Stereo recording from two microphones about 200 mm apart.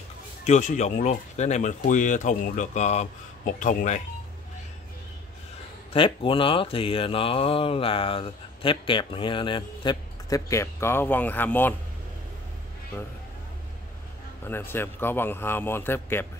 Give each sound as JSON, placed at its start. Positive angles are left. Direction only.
{"t": 0.5, "sound": "speech", "side_deg": 35}
{"t": 5.9, "sound": "speech", "side_deg": 25}
{"t": 14.4, "sound": "a man's voice", "side_deg": 10}